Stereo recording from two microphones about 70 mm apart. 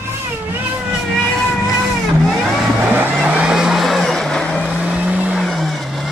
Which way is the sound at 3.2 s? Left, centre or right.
Centre.